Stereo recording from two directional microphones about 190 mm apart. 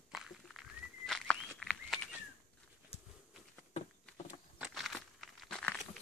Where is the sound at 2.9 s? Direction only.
30° left (ahead or behind).